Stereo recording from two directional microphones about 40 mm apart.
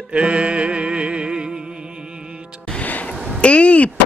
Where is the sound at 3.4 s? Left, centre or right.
Left.